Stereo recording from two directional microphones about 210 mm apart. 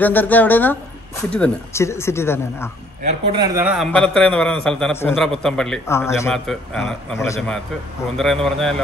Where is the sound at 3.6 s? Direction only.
5° right (ahead or behind); by 6.3 s 10° left (ahead or behind).